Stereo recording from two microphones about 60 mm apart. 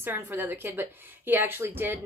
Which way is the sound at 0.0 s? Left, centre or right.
Right.